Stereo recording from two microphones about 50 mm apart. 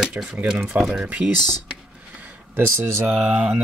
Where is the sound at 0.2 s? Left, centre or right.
Right.